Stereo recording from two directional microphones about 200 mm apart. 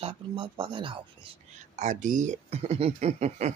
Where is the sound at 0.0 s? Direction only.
25° right (ahead or behind).